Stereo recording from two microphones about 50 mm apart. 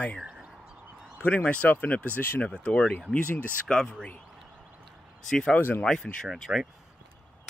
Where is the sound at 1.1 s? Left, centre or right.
Left.